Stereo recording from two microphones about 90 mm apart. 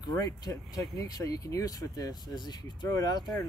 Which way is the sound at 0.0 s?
45° left (ahead or behind).